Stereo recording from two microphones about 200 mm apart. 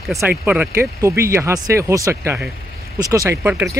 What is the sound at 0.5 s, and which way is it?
Speech, 10° right (ahead or behind).